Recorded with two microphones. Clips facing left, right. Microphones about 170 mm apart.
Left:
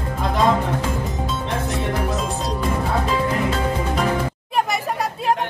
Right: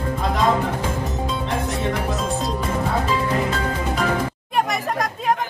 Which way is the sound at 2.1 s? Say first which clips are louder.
Right 1 dB; centre (ahead or behind).